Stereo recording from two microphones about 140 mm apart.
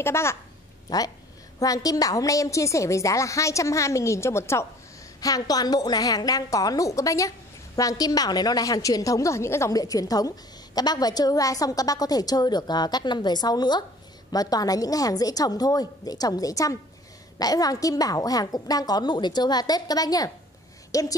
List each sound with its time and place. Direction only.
0.0 s a woman's voice: 20° left (ahead or behind)